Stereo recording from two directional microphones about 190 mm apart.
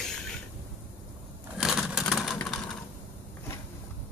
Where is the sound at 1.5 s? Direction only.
Centre (ahead or behind).